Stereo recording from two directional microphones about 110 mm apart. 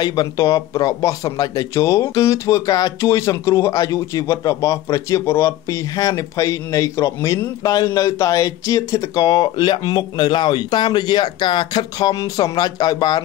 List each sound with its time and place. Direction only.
0.0 s speech: 35° left (ahead or behind)